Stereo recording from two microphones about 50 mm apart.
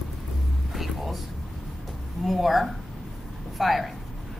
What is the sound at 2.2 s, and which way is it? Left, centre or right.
A woman's voice, centre.